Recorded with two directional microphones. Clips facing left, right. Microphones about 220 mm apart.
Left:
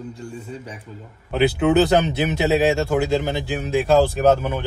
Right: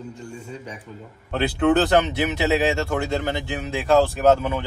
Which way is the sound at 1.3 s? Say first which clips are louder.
Left 2 dB; 10° left (ahead or behind).